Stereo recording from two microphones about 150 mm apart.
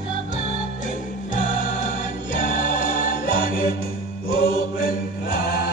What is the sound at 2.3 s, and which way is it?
Music, 60° left (ahead or behind).